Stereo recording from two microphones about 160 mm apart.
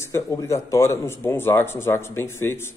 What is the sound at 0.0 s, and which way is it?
Speech, 20° left (ahead or behind).